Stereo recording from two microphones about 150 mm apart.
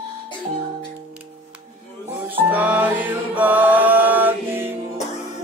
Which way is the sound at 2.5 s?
10° right (ahead or behind).